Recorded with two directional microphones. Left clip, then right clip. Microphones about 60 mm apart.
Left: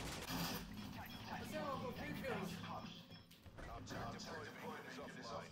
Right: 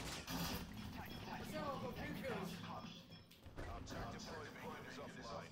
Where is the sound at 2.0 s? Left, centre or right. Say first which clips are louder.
Left 1 dB; centre.